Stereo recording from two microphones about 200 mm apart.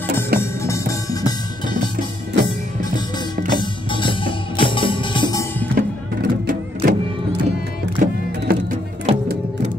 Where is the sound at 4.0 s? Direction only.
25° left (ahead or behind).